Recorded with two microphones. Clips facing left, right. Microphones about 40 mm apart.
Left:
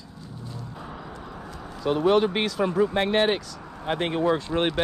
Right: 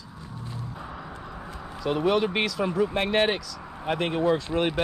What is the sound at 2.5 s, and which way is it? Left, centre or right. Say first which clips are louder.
Speech: left 2 dB; left.